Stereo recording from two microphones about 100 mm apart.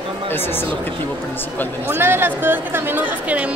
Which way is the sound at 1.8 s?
20° right (ahead or behind).